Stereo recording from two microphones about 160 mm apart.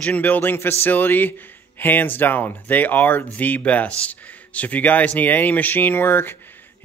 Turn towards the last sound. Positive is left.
turn(degrees=10)  # may be behind; listen again after turning